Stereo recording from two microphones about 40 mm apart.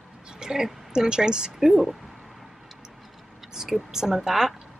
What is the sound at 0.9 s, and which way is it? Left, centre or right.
Speech, centre.